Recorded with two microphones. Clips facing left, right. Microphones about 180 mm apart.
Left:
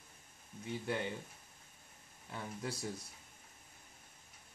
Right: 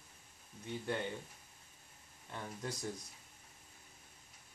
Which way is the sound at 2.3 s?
5° left (ahead or behind).